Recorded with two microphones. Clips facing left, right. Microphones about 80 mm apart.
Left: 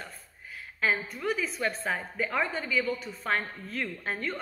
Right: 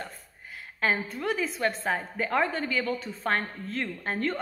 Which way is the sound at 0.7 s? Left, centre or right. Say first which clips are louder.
Right 1 dB; right.